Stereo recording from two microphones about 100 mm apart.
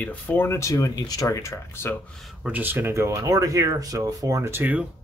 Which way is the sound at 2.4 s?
20° right (ahead or behind).